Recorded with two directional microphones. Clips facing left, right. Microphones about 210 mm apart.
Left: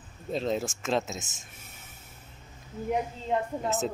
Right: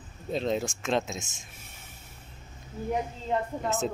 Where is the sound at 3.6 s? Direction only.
5° left (ahead or behind).